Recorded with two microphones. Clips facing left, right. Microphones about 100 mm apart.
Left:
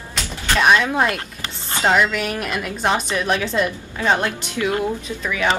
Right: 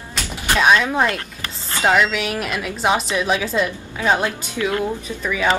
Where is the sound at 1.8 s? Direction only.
5° right (ahead or behind).